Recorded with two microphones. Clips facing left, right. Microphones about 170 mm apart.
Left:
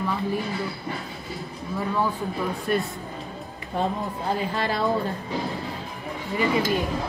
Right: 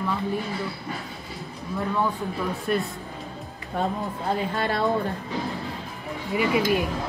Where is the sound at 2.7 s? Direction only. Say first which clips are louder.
Even; centre (ahead or behind).